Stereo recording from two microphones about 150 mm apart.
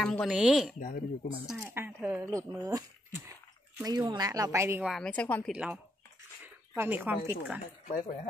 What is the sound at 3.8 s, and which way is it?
Speech, 25° right (ahead or behind).